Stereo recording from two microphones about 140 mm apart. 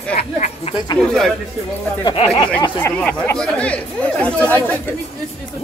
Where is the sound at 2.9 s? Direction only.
10° left (ahead or behind).